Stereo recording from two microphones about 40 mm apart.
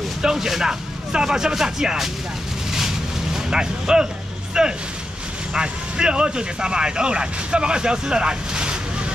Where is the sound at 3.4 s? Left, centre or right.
Centre.